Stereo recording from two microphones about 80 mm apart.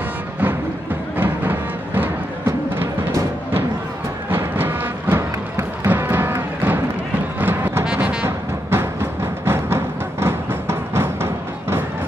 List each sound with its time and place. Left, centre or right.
1.1 s music: right
4.3 s music: right
7.8 s music: centre
8.6 s music: right